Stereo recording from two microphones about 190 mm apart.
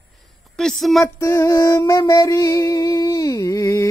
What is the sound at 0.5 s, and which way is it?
Speech, centre (ahead or behind).